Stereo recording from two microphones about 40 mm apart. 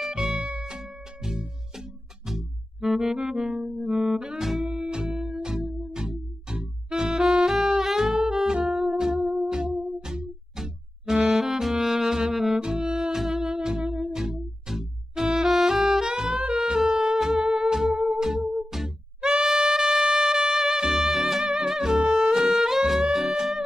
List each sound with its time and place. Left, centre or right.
0.0 s music: centre
3.5 s music: right
3.9 s music: centre
11.3 s saxophone: centre
12.5 s music: centre
16.1 s saxophone: centre
16.5 s music: centre
17.5 s music: right